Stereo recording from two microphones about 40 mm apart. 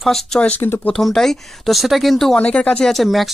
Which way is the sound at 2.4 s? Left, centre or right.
Left.